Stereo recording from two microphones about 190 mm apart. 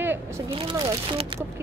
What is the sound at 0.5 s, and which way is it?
Speech, 30° right (ahead or behind).